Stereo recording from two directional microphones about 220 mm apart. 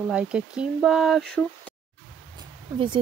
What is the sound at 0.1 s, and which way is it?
Speech, 5° right (ahead or behind).